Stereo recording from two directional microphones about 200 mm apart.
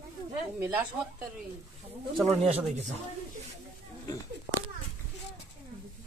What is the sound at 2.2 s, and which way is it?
Speech, 30° right (ahead or behind).